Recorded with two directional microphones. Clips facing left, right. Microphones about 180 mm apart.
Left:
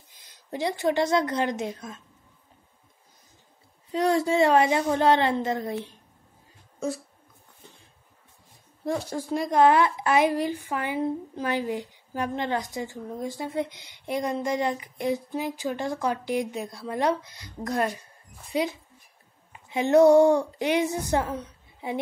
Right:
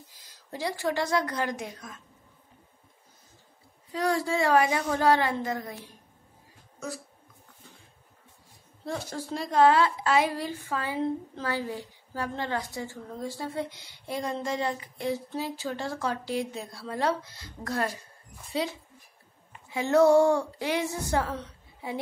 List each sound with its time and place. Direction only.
0.2 s a woman's voice: 20° left (ahead or behind)
3.9 s a woman's voice: 20° left (ahead or behind)
8.8 s speech: 15° left (ahead or behind)
19.7 s a woman's voice: 20° left (ahead or behind)